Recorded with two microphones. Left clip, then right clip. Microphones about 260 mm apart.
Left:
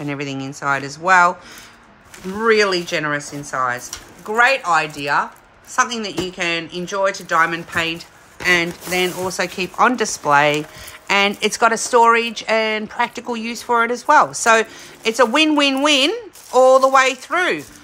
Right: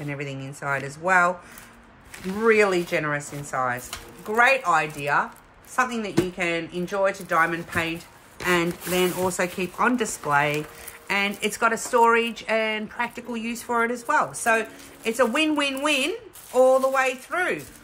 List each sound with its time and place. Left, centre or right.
0.0 s speech: centre
2.3 s speech: centre